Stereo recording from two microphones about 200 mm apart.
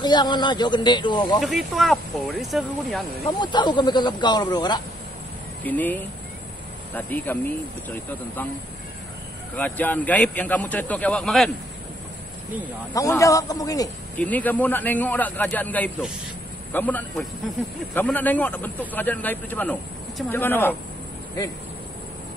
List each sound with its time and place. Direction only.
0.0 s speech: 20° left (ahead or behind)
1.4 s speech: centre (ahead or behind)
3.3 s speech: 20° left (ahead or behind)
5.6 s a man's voice: 10° left (ahead or behind)
9.6 s a man's voice: 10° left (ahead or behind)
12.9 s a man's voice: 15° left (ahead or behind)